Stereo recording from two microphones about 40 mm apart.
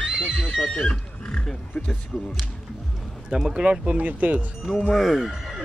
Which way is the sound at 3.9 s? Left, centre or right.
Right.